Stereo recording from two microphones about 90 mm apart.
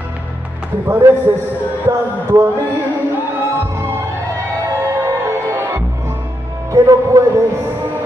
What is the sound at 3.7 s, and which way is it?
Music, 30° right (ahead or behind).